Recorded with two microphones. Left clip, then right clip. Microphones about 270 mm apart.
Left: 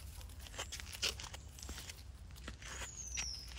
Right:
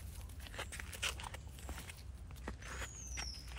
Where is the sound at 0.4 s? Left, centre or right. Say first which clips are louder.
Even; left.